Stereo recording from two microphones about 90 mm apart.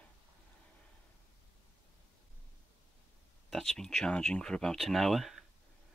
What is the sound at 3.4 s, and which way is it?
Speech, 5° left (ahead or behind).